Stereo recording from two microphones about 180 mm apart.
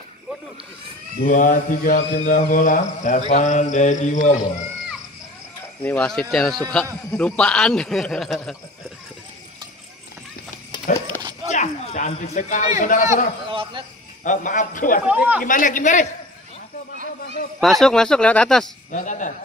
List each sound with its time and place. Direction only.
1.2 s mantra: 45° left (ahead or behind)
5.8 s a man's voice: 5° left (ahead or behind)
10.7 s dog: 15° left (ahead or behind)
11.5 s speech: 40° left (ahead or behind)
12.8 s mantra: 45° left (ahead or behind)
13.5 s a sound: 30° right (ahead or behind)
14.2 s mantra: 45° left (ahead or behind)
15.0 s speech: 10° right (ahead or behind)
15.4 s mantra: 50° left (ahead or behind)
17.6 s a man's voice: centre (ahead or behind)
18.9 s mantra: 45° left (ahead or behind)